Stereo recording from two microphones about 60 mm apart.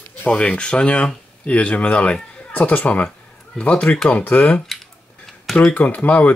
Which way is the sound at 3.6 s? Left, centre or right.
Centre.